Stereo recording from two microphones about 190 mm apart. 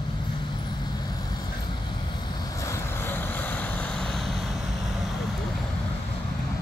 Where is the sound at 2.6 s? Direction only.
15° left (ahead or behind).